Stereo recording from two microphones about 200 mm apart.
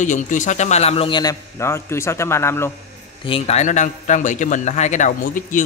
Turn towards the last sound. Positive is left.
turn(degrees=40)  # may be behind; listen again after turning